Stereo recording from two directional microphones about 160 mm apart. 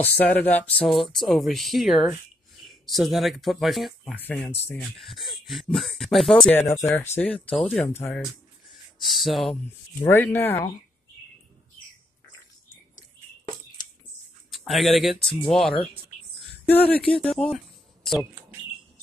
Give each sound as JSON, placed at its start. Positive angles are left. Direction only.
{"t": 0.0, "sound": "speech", "side_deg": 10}
{"t": 9.0, "sound": "speech", "side_deg": 0}
{"t": 9.9, "sound": "speech", "side_deg": 15}
{"t": 14.5, "sound": "speech", "side_deg": 0}